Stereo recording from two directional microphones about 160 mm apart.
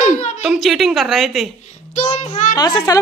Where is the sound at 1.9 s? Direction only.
50° left (ahead or behind).